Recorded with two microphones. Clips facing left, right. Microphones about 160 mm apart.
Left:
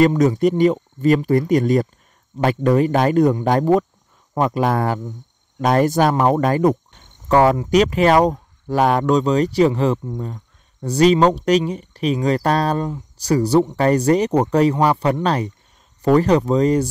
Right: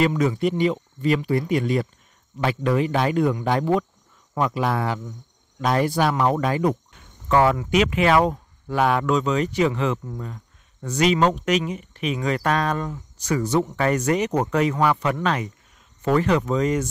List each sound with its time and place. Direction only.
0.0 s speech: 40° left (ahead or behind)